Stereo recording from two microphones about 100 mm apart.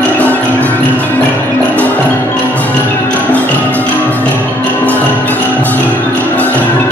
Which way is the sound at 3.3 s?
15° left (ahead or behind).